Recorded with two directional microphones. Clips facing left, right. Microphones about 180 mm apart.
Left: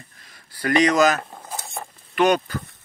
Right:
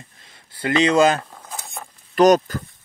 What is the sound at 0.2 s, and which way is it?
Speech, 25° right (ahead or behind).